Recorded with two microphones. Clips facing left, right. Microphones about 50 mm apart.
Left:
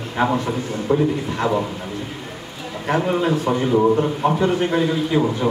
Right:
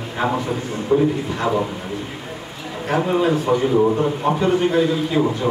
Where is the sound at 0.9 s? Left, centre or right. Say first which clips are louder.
Right 2 dB; left.